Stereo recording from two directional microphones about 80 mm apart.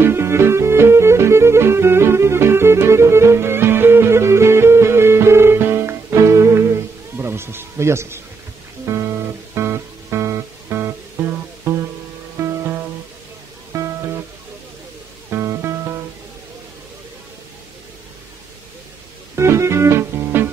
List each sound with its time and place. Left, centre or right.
0.0 s music: right
9.6 s music: right
11.7 s music: right
13.7 s music: right
15.2 s music: right
19.3 s music: right